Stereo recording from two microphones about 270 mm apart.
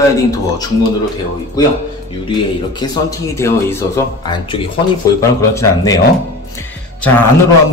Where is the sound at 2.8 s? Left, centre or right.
Centre.